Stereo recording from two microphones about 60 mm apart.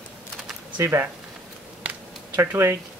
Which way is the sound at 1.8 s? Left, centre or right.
Right.